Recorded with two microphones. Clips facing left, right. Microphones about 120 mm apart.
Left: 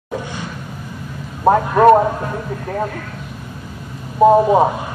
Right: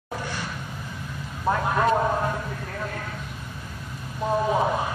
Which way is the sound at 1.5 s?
55° left (ahead or behind).